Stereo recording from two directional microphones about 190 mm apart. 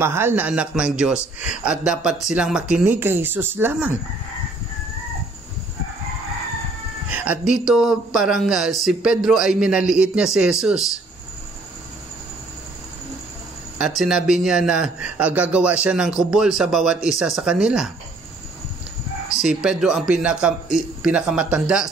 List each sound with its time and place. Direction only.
0.0 s a man's voice: 15° right (ahead or behind)
7.1 s a man's voice: 10° right (ahead or behind)
13.7 s a man's voice: 5° right (ahead or behind)
19.3 s a man's voice: 5° right (ahead or behind)